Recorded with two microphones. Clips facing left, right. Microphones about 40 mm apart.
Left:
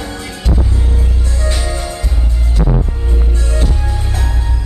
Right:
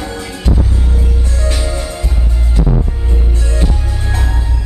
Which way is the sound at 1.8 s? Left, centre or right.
Centre.